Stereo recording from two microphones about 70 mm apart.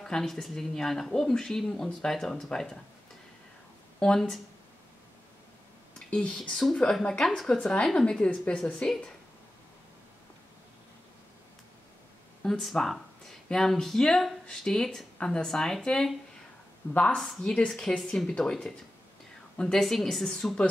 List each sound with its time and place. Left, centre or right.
0.0 s speech: centre
4.0 s speech: centre
5.9 s speech: centre
12.4 s speech: centre